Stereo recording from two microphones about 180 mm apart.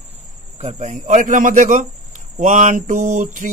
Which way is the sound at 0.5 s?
40° right (ahead or behind).